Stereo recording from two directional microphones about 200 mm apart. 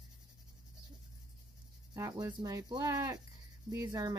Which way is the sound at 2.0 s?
20° right (ahead or behind).